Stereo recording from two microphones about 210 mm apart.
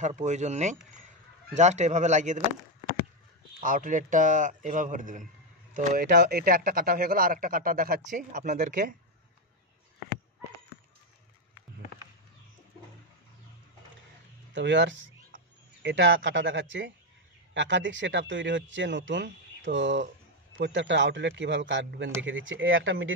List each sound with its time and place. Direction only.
0.0 s speech: 35° right (ahead or behind)
3.6 s speech: 40° right (ahead or behind)
6.0 s speech: 50° right (ahead or behind)
14.5 s speech: 60° right (ahead or behind)